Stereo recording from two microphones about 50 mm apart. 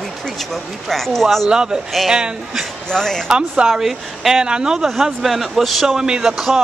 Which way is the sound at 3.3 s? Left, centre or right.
Centre.